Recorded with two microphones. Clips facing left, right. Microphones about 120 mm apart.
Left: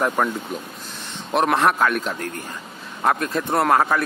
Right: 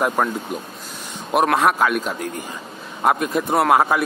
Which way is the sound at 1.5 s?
5° right (ahead or behind).